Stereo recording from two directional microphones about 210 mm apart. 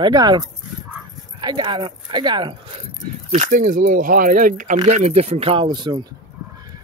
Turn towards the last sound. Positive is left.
turn(degrees=-20)  # may be behind; listen again after turning